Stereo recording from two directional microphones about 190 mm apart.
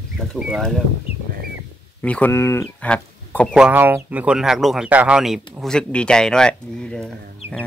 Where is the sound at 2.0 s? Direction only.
10° left (ahead or behind).